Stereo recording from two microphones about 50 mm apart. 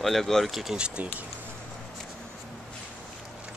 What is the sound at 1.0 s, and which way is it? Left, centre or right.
Speech, right.